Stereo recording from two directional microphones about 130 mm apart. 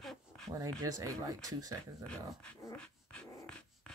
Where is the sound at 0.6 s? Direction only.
30° right (ahead or behind).